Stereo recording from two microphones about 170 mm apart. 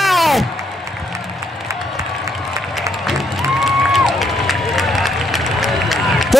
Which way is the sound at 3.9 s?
Centre (ahead or behind).